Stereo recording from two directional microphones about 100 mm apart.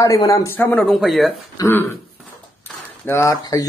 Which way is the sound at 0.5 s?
15° left (ahead or behind).